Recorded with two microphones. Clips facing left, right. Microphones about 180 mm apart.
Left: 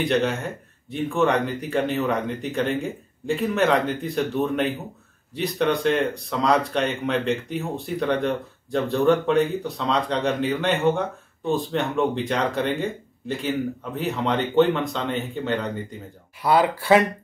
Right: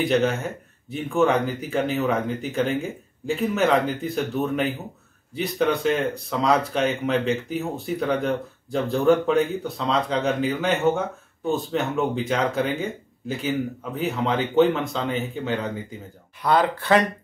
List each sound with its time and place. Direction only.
0.0 s speech: centre (ahead or behind)
16.4 s speech: 10° left (ahead or behind)